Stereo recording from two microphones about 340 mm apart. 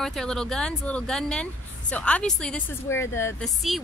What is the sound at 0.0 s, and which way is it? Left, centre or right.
Speech, centre.